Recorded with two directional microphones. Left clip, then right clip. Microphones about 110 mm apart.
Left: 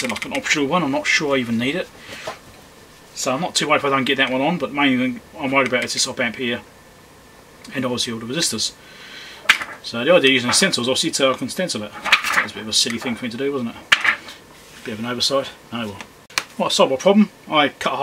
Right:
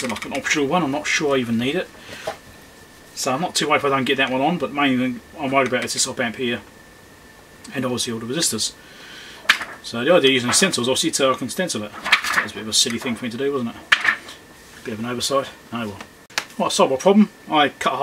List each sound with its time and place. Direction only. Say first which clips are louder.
0.0 s speech: left 2 dB; 5° left (ahead or behind)
0.4 s speech: even; 10° right (ahead or behind)
3.3 s speech: left 1 dB; 5° right (ahead or behind)
7.7 s speech: left 1 dB; 10° right (ahead or behind)
9.8 s speech: left 1 dB; 5° right (ahead or behind)